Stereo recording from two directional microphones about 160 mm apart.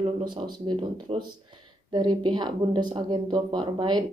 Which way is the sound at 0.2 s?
25° right (ahead or behind).